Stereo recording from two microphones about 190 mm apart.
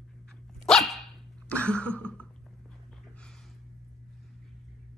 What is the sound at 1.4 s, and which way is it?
Cough, 5° left (ahead or behind).